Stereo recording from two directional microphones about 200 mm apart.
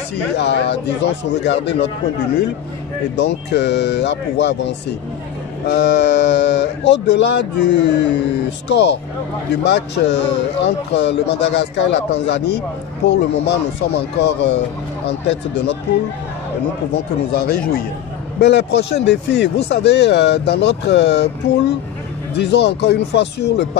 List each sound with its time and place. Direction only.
0.4 s speech: 60° left (ahead or behind)
3.2 s speech: 55° left (ahead or behind)
17.5 s speech: 50° left (ahead or behind)